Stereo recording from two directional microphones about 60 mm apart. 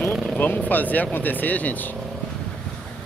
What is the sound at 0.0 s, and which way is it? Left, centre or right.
Speech, left.